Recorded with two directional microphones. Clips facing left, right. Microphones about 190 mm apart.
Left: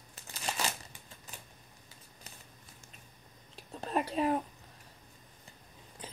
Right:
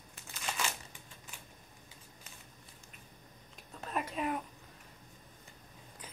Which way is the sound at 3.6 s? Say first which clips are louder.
Left 5 dB; 30° left (ahead or behind).